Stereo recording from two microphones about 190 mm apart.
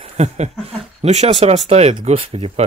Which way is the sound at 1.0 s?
35° right (ahead or behind).